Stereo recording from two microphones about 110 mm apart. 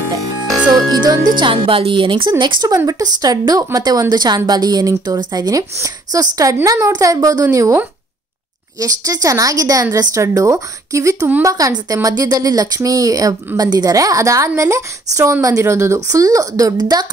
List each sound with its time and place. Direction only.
0.7 s speech: 35° right (ahead or behind)
2.7 s speech: 30° right (ahead or behind)